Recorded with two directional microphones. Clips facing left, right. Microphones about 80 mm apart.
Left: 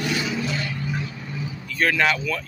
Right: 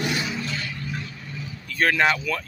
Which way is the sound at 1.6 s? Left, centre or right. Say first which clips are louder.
Even; right.